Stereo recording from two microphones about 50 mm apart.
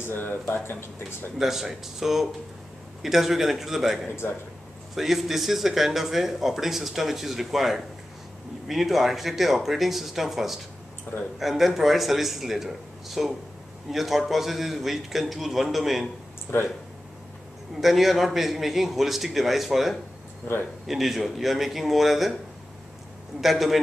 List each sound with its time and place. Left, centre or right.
0.0 s speech: left
1.4 s speech: centre
17.7 s speech: centre
23.4 s speech: centre